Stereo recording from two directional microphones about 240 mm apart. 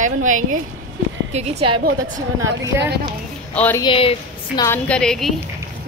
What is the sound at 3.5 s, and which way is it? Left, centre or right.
Speech, centre.